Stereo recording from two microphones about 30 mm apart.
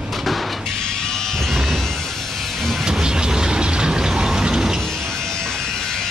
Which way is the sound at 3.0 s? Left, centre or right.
Right.